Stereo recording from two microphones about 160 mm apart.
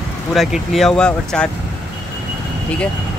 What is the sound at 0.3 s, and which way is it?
Speech, centre (ahead or behind).